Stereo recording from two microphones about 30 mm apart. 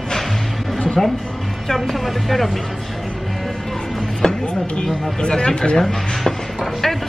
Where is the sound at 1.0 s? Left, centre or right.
Centre.